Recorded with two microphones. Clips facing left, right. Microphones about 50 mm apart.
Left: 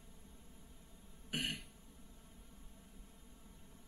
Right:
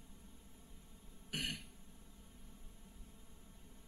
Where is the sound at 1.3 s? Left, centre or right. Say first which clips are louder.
Left 2 dB; centre.